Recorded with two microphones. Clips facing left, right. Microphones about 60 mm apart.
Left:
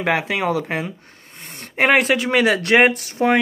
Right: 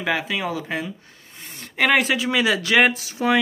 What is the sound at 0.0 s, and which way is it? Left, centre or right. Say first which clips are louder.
Speech: left 4 dB; left.